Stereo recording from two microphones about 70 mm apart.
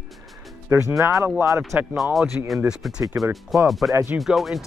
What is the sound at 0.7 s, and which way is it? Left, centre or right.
Speech, right.